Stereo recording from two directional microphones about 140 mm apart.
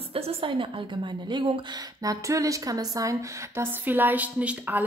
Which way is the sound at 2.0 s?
25° right (ahead or behind).